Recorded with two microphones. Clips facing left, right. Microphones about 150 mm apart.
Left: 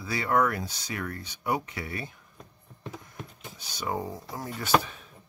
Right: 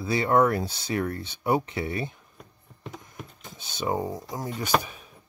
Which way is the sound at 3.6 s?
25° right (ahead or behind).